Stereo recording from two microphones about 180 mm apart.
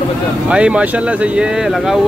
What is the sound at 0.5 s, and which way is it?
Speech, 5° right (ahead or behind).